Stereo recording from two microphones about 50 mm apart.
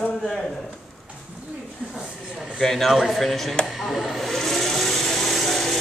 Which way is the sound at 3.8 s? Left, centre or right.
Centre.